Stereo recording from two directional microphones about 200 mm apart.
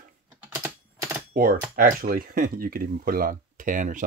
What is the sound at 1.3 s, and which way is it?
Speech, 45° right (ahead or behind).